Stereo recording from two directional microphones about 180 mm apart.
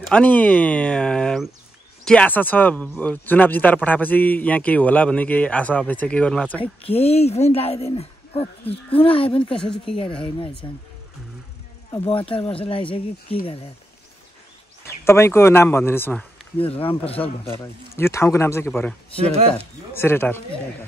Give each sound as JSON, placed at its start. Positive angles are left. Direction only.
{"t": 0.1, "sound": "speech", "side_deg": 10}
{"t": 6.6, "sound": "speech", "side_deg": 35}
{"t": 12.0, "sound": "speech", "side_deg": 30}
{"t": 15.0, "sound": "speech", "side_deg": 15}
{"t": 16.5, "sound": "speech", "side_deg": 30}
{"t": 17.9, "sound": "speech", "side_deg": 15}